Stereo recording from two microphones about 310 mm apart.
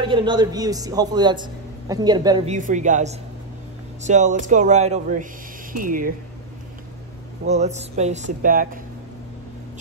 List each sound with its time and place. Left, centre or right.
0.0 s speech: centre
7.4 s speech: right